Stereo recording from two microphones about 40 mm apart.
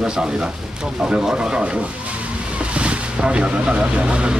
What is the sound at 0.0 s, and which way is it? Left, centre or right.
Speech, centre.